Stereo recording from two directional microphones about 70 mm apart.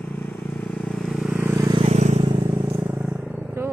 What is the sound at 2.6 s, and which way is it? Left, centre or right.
Vehicle, right.